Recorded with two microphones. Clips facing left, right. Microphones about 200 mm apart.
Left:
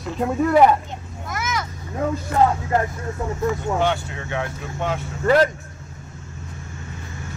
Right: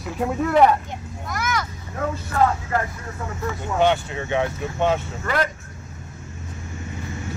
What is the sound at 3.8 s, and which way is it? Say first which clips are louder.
Speech: right 3 dB; 20° right (ahead or behind).